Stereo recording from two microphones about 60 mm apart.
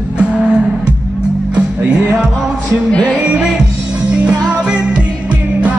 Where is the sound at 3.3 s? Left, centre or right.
Centre.